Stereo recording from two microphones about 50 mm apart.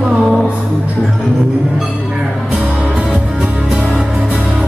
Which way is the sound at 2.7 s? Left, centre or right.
Centre.